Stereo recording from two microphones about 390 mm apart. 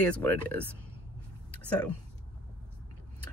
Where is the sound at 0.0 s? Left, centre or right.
Centre.